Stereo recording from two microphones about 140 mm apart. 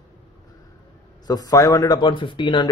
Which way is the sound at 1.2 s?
25° left (ahead or behind).